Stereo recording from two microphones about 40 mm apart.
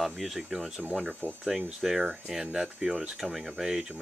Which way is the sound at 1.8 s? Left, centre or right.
Centre.